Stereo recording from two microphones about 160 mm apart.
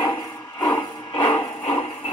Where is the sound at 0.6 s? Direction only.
25° left (ahead or behind).